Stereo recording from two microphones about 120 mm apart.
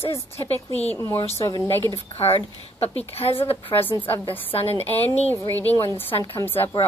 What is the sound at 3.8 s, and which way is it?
Speech, 15° left (ahead or behind).